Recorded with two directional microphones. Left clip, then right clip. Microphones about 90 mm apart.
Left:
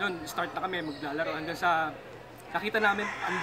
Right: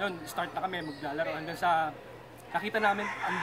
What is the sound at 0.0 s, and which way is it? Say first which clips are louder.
A man's voice: left 2 dB; 25° right (ahead or behind).